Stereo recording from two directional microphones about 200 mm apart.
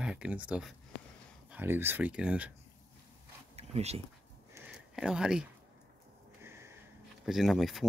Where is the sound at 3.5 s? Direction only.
30° right (ahead or behind).